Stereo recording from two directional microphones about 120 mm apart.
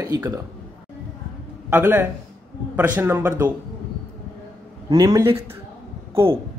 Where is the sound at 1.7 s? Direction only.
15° right (ahead or behind).